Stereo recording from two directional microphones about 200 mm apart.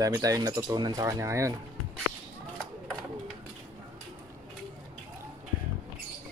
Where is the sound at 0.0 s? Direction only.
15° right (ahead or behind).